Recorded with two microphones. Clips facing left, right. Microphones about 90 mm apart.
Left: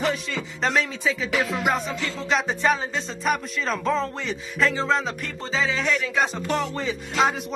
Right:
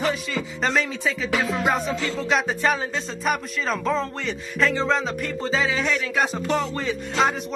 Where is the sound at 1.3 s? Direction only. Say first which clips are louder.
Right 1 dB; 30° right (ahead or behind).